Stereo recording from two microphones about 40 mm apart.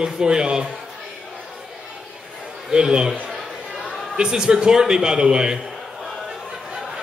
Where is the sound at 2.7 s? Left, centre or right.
Centre.